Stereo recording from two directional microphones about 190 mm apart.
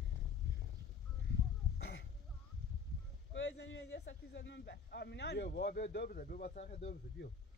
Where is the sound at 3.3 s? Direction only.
70° left (ahead or behind); by 6.9 s 40° left (ahead or behind).